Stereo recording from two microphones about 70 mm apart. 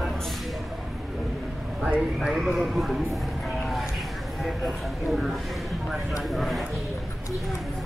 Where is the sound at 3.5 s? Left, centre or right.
Centre.